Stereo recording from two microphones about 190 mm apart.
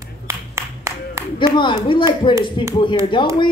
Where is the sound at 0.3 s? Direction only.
15° right (ahead or behind).